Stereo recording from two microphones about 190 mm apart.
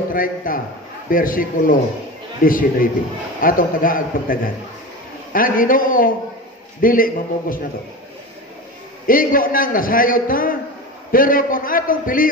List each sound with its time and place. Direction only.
0.1 s a man's voice: 45° left (ahead or behind)
9.0 s a man's voice: 45° left (ahead or behind)